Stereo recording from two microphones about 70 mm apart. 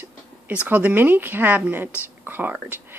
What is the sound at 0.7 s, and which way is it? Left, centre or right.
Speech, right.